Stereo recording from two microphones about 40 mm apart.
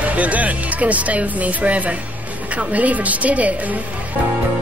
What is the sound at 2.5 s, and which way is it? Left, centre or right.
A woman's voice, right.